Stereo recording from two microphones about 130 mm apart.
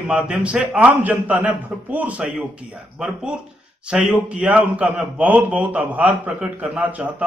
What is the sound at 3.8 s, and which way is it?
A man's voice, 5° right (ahead or behind).